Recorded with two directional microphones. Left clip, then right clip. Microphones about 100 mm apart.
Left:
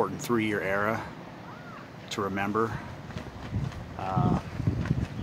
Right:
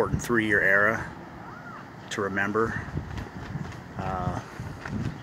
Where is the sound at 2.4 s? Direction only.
5° left (ahead or behind).